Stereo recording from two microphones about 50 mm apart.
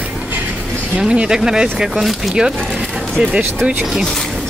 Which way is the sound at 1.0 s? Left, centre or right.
Centre.